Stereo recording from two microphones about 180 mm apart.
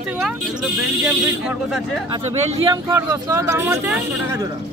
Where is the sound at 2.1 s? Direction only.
35° right (ahead or behind); by 4.4 s 10° right (ahead or behind).